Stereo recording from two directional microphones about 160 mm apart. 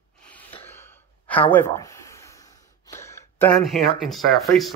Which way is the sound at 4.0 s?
Centre (ahead or behind).